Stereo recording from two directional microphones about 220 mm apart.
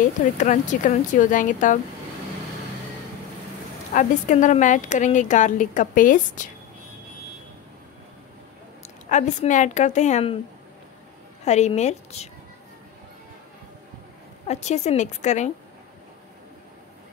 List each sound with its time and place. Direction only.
0.4 s a woman's voice: 35° left (ahead or behind)
3.9 s a woman's voice: 35° left (ahead or behind)
9.1 s a woman's voice: 35° left (ahead or behind)
11.4 s a woman's voice: 30° left (ahead or behind)
14.5 s a woman's voice: 30° left (ahead or behind)